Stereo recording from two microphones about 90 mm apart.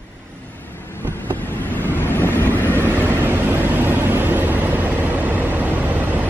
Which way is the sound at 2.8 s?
20° right (ahead or behind).